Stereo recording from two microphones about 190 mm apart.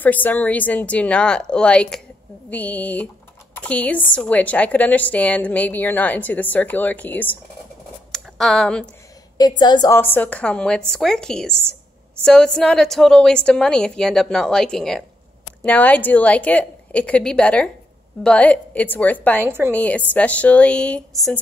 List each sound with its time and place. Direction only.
0.0 s a woman's voice: 10° left (ahead or behind)
8.1 s a sound: centre (ahead or behind)
9.6 s a woman's voice: 20° left (ahead or behind)
9.9 s a woman's voice: 10° left (ahead or behind)
19.4 s a woman's voice: 10° right (ahead or behind)
19.7 s a woman's voice: 5° left (ahead or behind)